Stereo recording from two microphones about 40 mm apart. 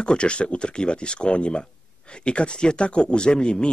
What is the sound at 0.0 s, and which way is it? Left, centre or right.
Speech, left.